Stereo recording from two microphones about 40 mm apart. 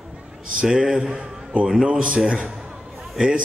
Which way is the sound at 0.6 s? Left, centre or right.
Centre.